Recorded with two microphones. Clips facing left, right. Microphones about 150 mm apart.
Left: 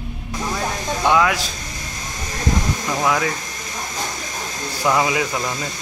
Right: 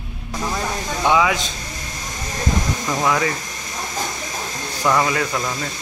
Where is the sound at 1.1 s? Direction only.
Centre (ahead or behind).